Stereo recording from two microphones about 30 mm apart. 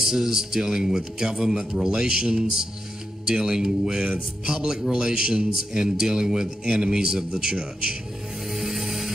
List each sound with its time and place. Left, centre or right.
0.0 s a man's voice: centre
8.5 s music: centre